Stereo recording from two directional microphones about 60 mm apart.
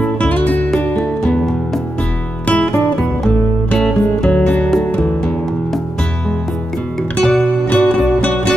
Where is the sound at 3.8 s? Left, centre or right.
Centre.